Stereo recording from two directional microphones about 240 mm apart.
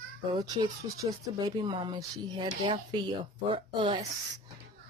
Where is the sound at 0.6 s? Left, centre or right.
Centre.